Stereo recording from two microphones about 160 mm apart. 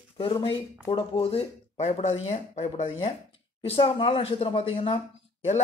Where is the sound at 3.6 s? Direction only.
35° left (ahead or behind).